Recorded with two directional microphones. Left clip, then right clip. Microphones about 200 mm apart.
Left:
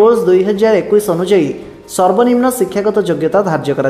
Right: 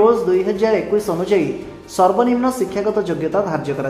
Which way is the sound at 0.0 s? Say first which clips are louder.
Left 5 dB; 25° left (ahead or behind).